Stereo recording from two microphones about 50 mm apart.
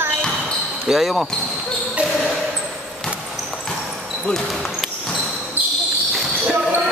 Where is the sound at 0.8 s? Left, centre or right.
Centre.